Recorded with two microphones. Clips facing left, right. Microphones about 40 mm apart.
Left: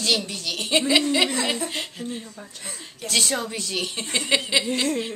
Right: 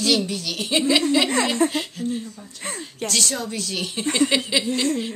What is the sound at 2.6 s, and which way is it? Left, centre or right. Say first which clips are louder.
Speech: right 10 dB; right.